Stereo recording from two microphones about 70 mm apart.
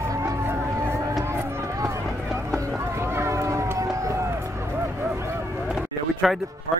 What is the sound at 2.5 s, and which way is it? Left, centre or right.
Run, right.